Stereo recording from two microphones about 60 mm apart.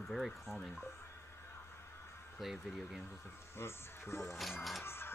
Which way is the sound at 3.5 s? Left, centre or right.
Left.